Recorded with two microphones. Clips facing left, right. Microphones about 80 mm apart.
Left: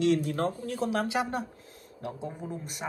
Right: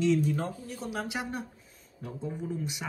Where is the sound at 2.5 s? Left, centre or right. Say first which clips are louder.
Right 3 dB; left.